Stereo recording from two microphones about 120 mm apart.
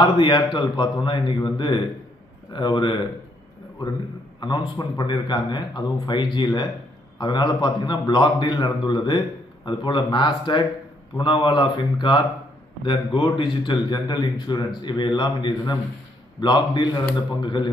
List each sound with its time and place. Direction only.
0.0 s a man's voice: 40° left (ahead or behind)
4.4 s a man's voice: 35° left (ahead or behind)